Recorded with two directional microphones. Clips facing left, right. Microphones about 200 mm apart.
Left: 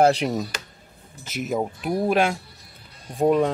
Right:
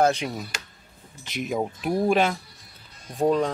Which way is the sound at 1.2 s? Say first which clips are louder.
Left 2 dB; 5° left (ahead or behind).